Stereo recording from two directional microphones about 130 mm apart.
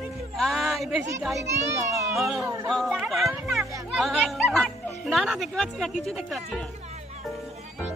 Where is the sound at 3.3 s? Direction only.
5° right (ahead or behind).